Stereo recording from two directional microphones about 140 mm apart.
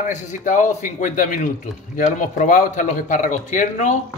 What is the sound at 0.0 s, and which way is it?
A man's voice, 60° left (ahead or behind).